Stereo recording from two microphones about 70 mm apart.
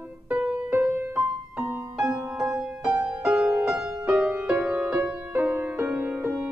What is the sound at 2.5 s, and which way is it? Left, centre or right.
Music, centre.